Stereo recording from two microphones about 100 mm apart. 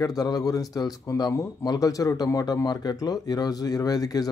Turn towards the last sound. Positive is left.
turn(degrees=40)  # may be behind; listen again after turning